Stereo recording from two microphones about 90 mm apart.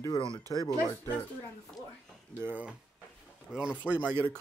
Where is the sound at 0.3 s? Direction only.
40° right (ahead or behind).